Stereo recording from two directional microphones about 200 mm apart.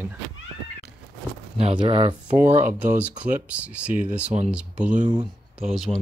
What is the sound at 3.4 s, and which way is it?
Speech, 5° right (ahead or behind).